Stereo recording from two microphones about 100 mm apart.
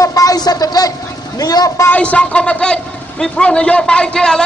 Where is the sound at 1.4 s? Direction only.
40° left (ahead or behind).